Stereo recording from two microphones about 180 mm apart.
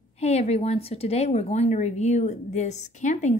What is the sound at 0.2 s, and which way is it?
A woman's voice, 35° left (ahead or behind).